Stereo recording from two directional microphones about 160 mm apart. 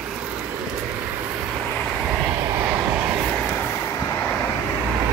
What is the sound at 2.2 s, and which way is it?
Vehicle, 25° right (ahead or behind).